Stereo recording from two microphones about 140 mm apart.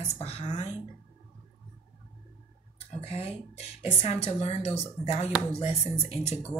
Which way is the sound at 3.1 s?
45° left (ahead or behind).